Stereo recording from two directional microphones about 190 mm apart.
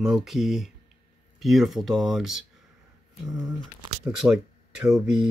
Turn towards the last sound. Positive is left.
turn(degrees=-5)  # may be behind; listen again after turning